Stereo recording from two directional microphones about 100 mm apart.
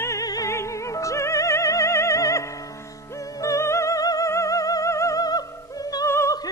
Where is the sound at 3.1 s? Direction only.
35° left (ahead or behind).